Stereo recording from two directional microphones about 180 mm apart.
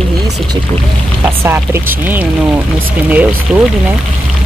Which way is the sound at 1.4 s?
10° right (ahead or behind).